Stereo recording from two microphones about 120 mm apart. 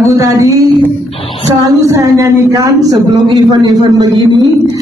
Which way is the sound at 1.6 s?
25° right (ahead or behind).